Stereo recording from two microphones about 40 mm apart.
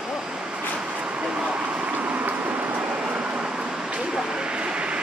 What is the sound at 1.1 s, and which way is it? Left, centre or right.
Vehicle, right.